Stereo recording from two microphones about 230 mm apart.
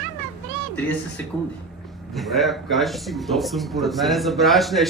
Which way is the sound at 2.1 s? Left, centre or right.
Centre.